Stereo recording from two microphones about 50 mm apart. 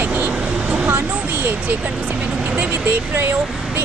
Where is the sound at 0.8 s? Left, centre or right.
Right.